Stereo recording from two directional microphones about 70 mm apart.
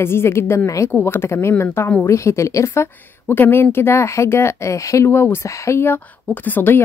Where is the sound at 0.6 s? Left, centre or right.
Left.